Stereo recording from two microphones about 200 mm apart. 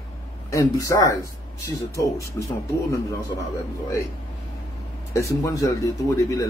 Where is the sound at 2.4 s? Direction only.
15° left (ahead or behind).